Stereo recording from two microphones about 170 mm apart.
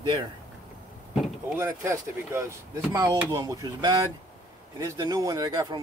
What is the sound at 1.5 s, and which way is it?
A man's voice, 15° right (ahead or behind).